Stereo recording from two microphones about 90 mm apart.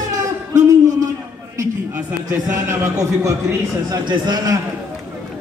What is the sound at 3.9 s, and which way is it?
Speech, 50° right (ahead or behind).